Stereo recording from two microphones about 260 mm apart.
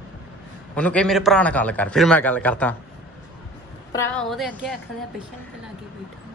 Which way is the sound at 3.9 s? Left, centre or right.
Centre.